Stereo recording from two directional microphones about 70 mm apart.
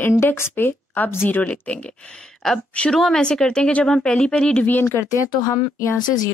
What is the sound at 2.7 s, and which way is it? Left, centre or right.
Speech, centre.